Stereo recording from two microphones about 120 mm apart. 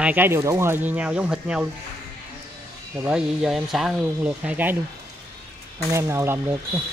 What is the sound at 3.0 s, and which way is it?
Speech, 10° right (ahead or behind).